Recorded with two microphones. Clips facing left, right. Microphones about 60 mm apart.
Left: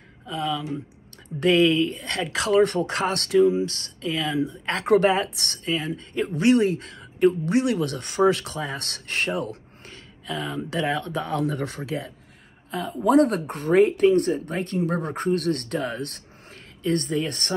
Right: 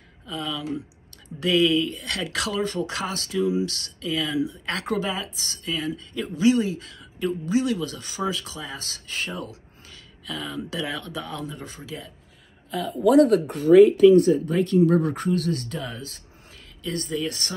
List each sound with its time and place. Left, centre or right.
0.3 s speech: left
2.5 s speech: left
4.8 s speech: left
5.7 s speech: left
6.4 s speech: left
11.4 s speech: left
12.7 s speech: left